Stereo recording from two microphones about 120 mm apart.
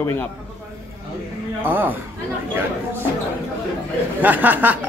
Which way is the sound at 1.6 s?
15° right (ahead or behind).